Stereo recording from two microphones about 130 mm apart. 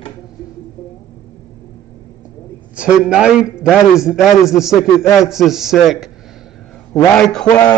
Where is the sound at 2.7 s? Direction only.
10° right (ahead or behind).